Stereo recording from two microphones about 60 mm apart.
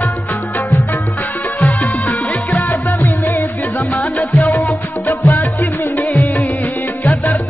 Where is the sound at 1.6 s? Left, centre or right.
Left.